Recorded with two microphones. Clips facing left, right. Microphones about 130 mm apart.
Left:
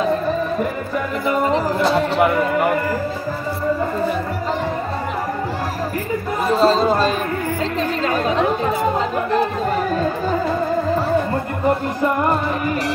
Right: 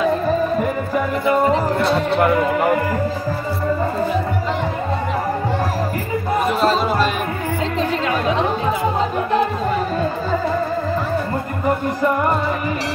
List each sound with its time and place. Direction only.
6.6 s chatter: 35° left (ahead or behind)